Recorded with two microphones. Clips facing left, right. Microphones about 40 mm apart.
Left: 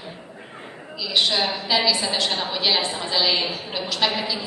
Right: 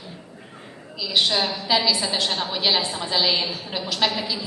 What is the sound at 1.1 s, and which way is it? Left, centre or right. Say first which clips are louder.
A woman's voice: even; centre.